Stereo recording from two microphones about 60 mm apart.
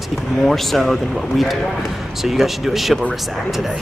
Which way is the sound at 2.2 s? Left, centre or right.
Centre.